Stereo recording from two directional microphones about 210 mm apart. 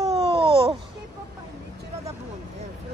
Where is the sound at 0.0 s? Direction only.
30° right (ahead or behind).